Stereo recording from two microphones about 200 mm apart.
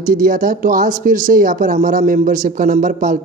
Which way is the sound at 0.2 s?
45° right (ahead or behind).